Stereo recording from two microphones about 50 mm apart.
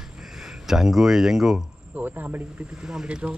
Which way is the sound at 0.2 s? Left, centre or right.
Centre.